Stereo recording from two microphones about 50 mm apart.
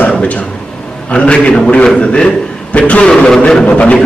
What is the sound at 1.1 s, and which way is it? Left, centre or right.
A man's voice, left.